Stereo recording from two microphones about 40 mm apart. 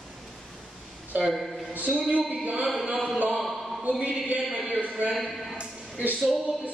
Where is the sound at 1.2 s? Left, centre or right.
Centre.